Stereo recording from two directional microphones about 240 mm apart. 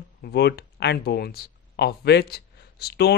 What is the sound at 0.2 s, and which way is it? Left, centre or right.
Speech, left.